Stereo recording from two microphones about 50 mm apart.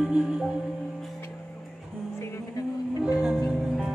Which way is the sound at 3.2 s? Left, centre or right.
Centre.